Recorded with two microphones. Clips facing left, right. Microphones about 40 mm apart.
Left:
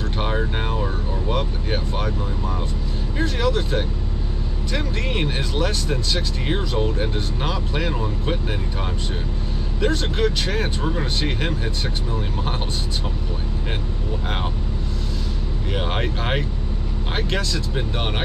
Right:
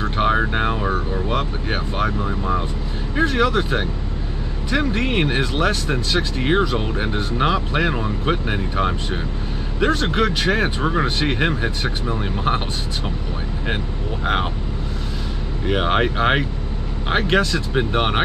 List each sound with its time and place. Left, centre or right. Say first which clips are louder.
0.6 s speech: right 4 dB; right
0.8 s speech: right 6 dB; right
1.3 s speech: even; right
3.2 s speech: right 5 dB; right
14.2 s speech: right 8 dB; right
15.6 s speech: right 7 dB; right